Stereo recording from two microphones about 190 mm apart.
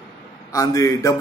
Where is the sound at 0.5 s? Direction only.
20° left (ahead or behind).